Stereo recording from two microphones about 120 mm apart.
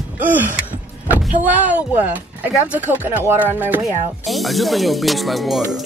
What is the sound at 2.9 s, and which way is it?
Speech, 15° right (ahead or behind).